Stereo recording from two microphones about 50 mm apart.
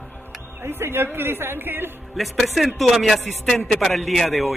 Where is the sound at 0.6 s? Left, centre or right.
Right.